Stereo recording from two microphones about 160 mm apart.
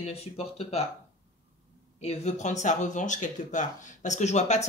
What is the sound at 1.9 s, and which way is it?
Speech, 45° left (ahead or behind).